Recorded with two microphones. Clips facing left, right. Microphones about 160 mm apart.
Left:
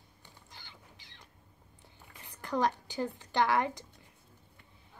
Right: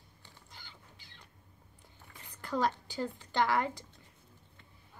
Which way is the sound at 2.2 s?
15° left (ahead or behind).